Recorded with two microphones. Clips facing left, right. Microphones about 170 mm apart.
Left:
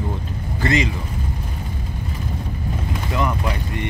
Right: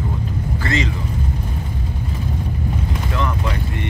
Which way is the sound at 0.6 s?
15° left (ahead or behind).